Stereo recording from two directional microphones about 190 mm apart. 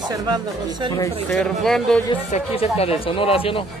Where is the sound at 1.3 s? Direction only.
Centre (ahead or behind).